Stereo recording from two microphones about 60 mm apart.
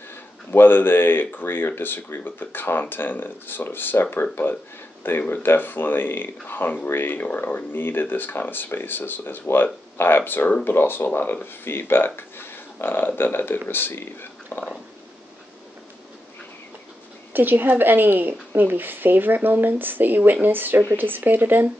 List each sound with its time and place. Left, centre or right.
0.5 s speech: left
14.5 s stomach rumble: left
17.3 s a woman's voice: right